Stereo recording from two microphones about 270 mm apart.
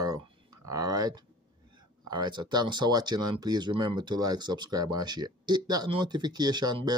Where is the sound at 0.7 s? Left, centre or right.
Centre.